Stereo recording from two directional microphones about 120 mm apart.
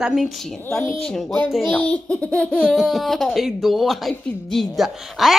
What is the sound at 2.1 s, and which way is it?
Speech, 10° left (ahead or behind).